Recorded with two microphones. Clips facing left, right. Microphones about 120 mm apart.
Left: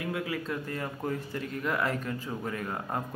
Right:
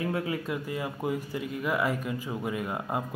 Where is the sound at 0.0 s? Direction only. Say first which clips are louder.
Right 3 dB; 30° right (ahead or behind).